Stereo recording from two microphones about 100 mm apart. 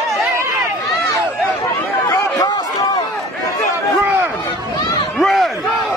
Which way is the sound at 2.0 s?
40° left (ahead or behind).